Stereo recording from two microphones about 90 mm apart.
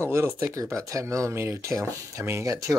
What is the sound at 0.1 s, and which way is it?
Speech, 30° right (ahead or behind).